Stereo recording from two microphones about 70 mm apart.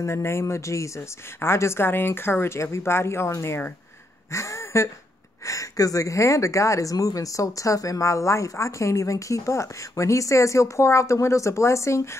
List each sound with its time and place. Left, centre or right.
0.0 s a woman's voice: left